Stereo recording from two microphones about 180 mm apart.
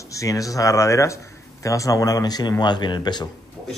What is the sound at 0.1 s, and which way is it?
A man's voice, 20° left (ahead or behind).